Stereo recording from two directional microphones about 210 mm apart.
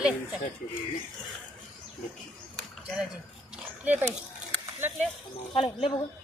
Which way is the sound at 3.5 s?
10° right (ahead or behind).